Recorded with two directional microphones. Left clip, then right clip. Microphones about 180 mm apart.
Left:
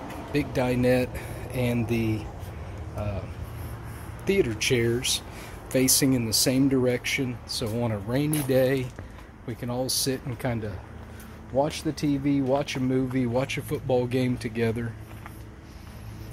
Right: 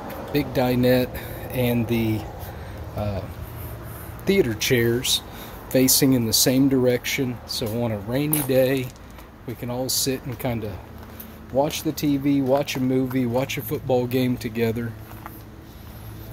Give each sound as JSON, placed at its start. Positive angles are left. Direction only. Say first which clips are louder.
{"t": 0.3, "sound": "speech", "louder": "right 4 dB", "side_deg": -20}
{"t": 4.2, "sound": "speech", "louder": "right 3 dB", "side_deg": -25}